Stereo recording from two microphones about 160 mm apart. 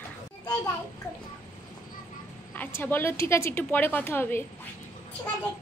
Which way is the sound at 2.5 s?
10° left (ahead or behind).